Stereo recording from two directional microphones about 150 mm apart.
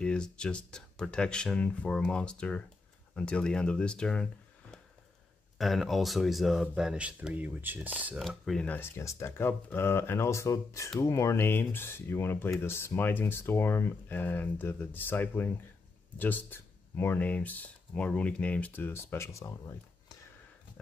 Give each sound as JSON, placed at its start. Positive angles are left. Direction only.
{"t": 0.0, "sound": "speech", "side_deg": 5}
{"t": 8.2, "sound": "speech", "side_deg": 0}
{"t": 8.6, "sound": "speech", "side_deg": 15}